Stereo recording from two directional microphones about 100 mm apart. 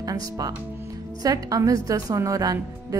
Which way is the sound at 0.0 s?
35° right (ahead or behind).